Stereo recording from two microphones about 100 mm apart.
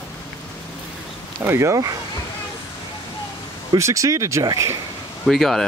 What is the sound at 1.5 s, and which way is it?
Speech, 30° right (ahead or behind).